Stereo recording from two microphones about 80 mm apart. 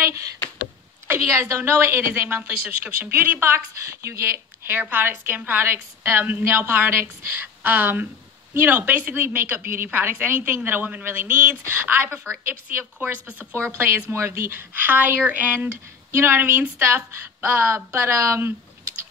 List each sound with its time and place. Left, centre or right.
0.0 s a woman's voice: right